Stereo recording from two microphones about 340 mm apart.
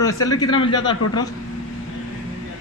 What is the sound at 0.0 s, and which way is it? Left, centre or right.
Speech, centre.